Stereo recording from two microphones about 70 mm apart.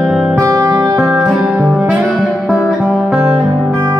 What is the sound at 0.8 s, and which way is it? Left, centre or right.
Music, centre.